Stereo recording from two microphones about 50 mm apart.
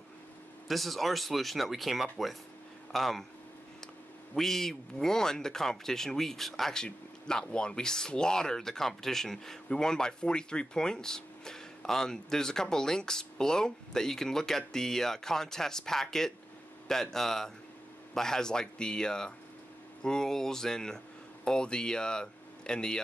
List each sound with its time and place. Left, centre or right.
0.7 s speech: centre
4.4 s speech: centre